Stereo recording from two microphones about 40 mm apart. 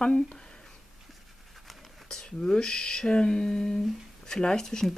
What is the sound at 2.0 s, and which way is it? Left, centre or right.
Speech, centre.